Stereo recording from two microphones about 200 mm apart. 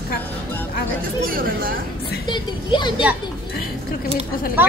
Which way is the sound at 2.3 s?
25° left (ahead or behind).